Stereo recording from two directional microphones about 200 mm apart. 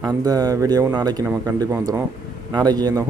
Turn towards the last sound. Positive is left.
turn(degrees=-20)  # may be behind; listen again after turning